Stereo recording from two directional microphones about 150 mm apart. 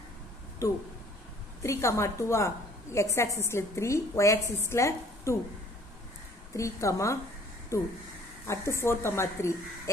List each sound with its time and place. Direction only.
0.6 s a woman's voice: 25° left (ahead or behind)
6.5 s a woman's voice: 20° left (ahead or behind)